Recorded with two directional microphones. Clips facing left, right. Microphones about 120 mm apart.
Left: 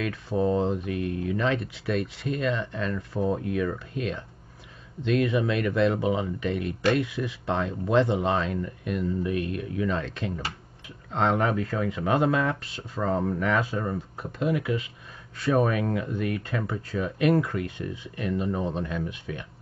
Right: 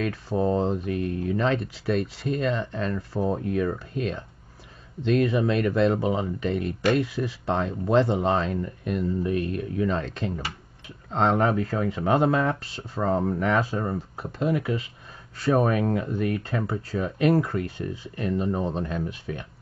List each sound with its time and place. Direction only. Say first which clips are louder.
0.0 s speech: right 1 dB; 35° right (ahead or behind)